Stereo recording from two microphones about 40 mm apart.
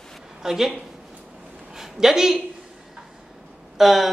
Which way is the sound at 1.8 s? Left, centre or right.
Centre.